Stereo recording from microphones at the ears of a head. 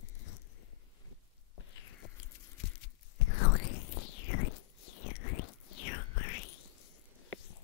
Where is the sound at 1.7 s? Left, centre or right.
Left.